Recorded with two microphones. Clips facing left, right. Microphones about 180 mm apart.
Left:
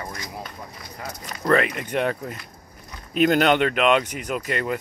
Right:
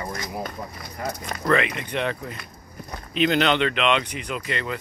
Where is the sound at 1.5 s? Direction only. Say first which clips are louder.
Left 2 dB; 45° left (ahead or behind).